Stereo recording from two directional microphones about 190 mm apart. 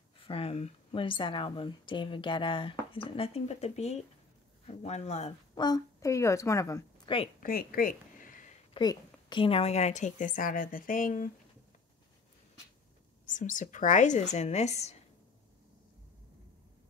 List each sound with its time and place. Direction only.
0.3 s a woman's voice: 30° left (ahead or behind)
5.5 s a woman's voice: 20° left (ahead or behind)
7.3 s a sound: 50° left (ahead or behind)
8.7 s a woman's voice: 25° left (ahead or behind); by 11.2 s 45° left (ahead or behind)
13.2 s a woman's voice: 45° left (ahead or behind)